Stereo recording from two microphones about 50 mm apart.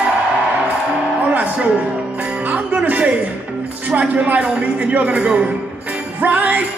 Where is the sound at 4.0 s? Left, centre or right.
Right.